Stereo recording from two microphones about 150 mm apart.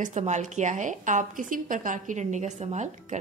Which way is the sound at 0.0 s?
55° right (ahead or behind).